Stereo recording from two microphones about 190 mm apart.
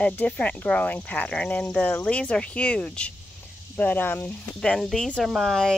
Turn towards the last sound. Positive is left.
turn(degrees=0)  # may be behind; listen again after turning